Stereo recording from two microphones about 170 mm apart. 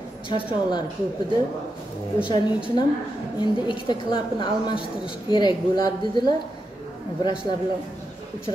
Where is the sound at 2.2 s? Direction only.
30° left (ahead or behind).